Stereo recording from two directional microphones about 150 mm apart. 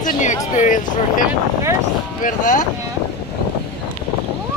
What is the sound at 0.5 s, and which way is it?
Speech, 60° left (ahead or behind).